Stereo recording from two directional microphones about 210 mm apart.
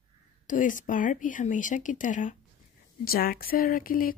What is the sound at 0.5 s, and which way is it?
Speech, 40° left (ahead or behind).